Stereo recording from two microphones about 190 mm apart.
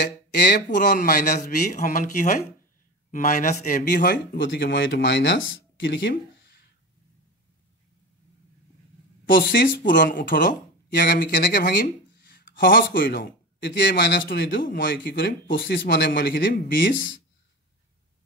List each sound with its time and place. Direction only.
0.6 s a man's voice: 45° left (ahead or behind)
4.4 s speech: 65° left (ahead or behind)
9.3 s speech: 70° left (ahead or behind)
9.9 s a man's voice: 45° left (ahead or behind); by 17.1 s 70° left (ahead or behind)